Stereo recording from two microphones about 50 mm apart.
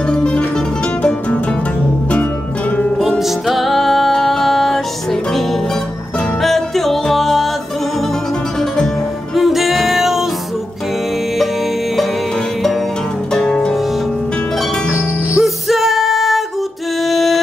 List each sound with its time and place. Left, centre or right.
0.1 s music: centre
3.0 s music: centre
6.4 s music: centre
9.3 s music: centre
13.3 s music: centre
15.3 s music: centre